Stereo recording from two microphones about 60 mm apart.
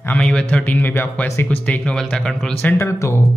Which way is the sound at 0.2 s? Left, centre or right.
Centre.